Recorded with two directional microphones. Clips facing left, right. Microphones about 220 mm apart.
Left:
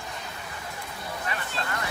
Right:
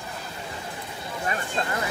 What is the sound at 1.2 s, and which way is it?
Vehicle, 30° right (ahead or behind).